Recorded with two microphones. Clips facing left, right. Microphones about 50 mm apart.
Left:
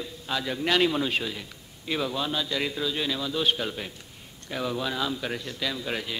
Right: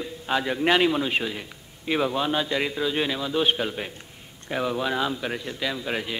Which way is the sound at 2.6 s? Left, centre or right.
Centre.